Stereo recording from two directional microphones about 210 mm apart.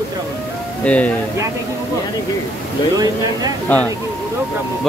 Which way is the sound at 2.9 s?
20° right (ahead or behind).